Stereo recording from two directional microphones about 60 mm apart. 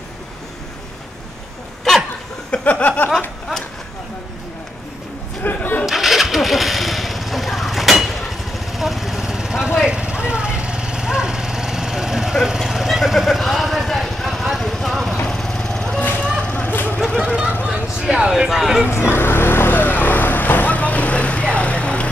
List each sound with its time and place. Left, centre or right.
2.5 s a sound: left
5.4 s a sound: left
5.9 s engine starting: centre
15.1 s vehicle: centre
16.4 s vehicle: left
18.0 s speech: centre
18.9 s vehicle: left; by 22.1 s centre